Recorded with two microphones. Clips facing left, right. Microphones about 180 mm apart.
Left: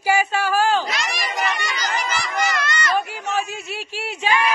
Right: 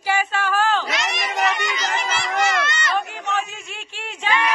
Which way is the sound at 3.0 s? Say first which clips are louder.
Left 1 dB; 10° left (ahead or behind).